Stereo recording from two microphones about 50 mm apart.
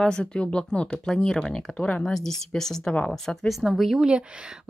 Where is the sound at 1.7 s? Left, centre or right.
Left.